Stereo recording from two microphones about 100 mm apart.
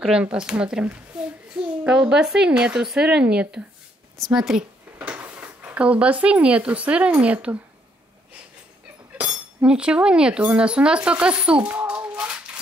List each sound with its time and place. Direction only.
0.0 s speech: 10° right (ahead or behind)
1.1 s child singing: 5° right (ahead or behind)
1.5 s speech: 10° right (ahead or behind)
9.2 s speech: 10° right (ahead or behind)